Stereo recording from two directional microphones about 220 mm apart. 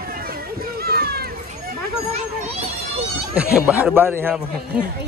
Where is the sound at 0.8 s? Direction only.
45° right (ahead or behind).